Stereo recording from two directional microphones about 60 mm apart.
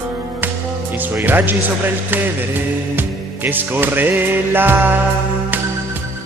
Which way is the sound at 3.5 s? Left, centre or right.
Right.